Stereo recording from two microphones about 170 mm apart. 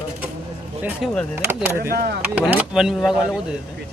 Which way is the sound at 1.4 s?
10° right (ahead or behind).